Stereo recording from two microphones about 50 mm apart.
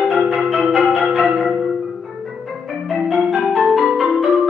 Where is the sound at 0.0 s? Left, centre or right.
Centre.